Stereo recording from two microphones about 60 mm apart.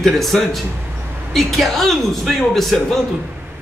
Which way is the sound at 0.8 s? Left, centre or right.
Right.